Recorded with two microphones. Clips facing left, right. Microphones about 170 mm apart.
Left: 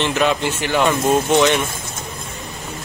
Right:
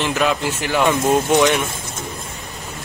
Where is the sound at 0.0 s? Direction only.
Centre (ahead or behind).